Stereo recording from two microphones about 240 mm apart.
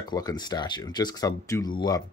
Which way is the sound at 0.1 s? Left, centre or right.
Centre.